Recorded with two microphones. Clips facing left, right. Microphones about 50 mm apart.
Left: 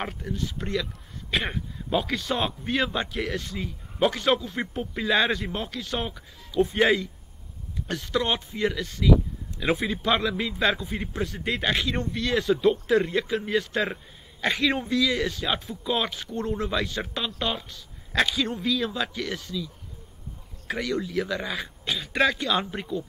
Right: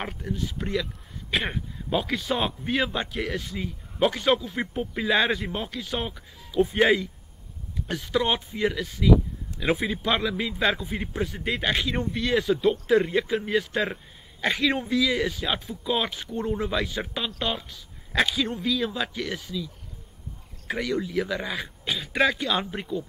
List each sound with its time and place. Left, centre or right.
0.0 s a man's voice: centre